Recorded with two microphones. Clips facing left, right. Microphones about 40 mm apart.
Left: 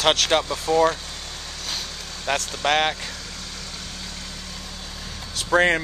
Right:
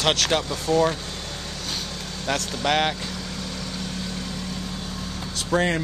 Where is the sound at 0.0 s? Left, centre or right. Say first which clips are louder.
Left 2 dB; centre.